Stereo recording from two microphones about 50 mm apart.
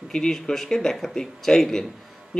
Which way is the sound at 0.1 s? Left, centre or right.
Centre.